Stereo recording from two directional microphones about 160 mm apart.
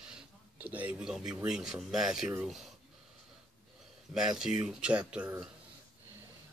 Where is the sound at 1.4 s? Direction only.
5° right (ahead or behind).